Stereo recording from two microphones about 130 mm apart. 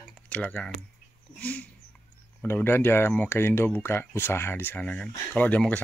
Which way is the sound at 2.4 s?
15° left (ahead or behind).